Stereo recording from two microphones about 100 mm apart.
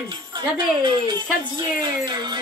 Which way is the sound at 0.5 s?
55° right (ahead or behind).